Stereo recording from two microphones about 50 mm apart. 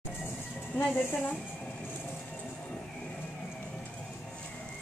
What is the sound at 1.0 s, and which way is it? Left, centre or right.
Speech, left.